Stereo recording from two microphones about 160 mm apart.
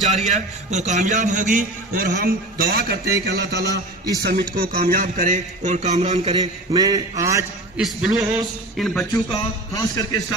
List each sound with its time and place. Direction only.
0.1 s a man's voice: 45° right (ahead or behind); by 3.8 s 90° right
4.2 s a man's voice: 65° right (ahead or behind); by 6.3 s 40° right (ahead or behind)
6.3 s a man's voice: 25° right (ahead or behind)
7.7 s a man's voice: 5° right (ahead or behind)
8.7 s a sound: centre (ahead or behind)
9.3 s a sound: 20° left (ahead or behind)